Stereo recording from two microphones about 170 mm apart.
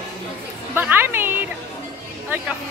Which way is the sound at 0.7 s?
10° right (ahead or behind).